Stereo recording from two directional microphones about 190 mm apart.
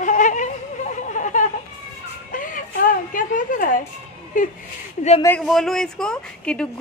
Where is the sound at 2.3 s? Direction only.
45° left (ahead or behind).